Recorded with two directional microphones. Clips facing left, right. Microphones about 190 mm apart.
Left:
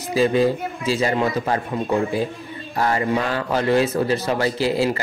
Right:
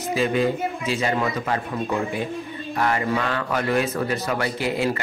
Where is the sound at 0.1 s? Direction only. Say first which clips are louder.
Left 4 dB; 35° left (ahead or behind).